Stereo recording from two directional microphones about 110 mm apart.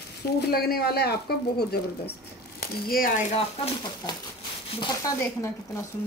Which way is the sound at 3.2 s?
75° left (ahead or behind).